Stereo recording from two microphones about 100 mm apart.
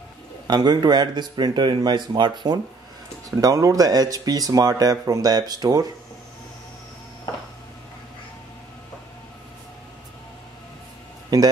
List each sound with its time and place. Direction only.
0.5 s speech: 45° right (ahead or behind)
3.3 s speech: 35° right (ahead or behind)
11.3 s a man's voice: 35° right (ahead or behind)